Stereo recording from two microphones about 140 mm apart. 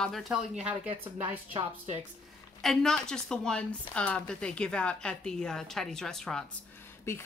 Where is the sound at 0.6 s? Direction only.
10° right (ahead or behind).